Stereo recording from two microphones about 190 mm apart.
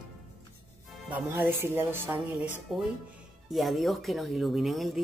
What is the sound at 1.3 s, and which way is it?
Speech, 10° right (ahead or behind).